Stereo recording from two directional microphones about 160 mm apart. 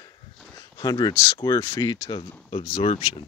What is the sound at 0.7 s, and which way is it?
Speech, 25° left (ahead or behind).